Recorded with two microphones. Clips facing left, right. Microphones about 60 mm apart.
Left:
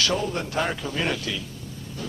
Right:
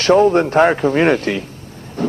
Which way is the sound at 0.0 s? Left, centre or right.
Right.